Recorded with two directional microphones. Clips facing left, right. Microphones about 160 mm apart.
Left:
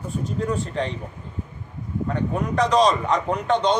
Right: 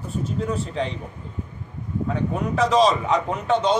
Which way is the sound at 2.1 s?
5° right (ahead or behind).